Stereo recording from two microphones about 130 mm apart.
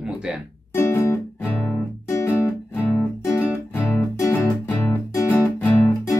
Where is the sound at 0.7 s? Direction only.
20° left (ahead or behind).